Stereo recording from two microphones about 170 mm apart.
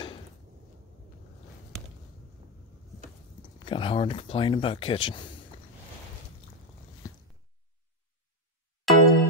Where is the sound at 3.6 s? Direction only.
30° left (ahead or behind).